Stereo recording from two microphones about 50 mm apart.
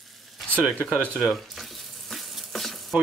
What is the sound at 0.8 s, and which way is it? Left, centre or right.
Speech, right.